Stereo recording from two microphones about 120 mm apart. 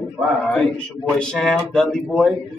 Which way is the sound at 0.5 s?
10° left (ahead or behind).